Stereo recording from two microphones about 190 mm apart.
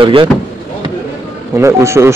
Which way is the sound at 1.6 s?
15° right (ahead or behind).